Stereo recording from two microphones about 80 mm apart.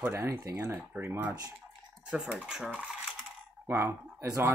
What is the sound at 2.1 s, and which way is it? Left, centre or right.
Speech, centre.